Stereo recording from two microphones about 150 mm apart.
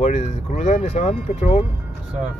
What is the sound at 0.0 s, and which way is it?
Speech, 50° left (ahead or behind).